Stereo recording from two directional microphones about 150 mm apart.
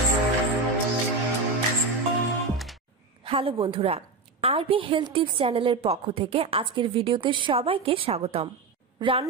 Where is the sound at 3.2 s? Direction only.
35° right (ahead or behind).